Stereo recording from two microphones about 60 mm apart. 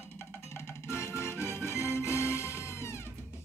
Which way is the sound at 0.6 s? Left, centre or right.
Left.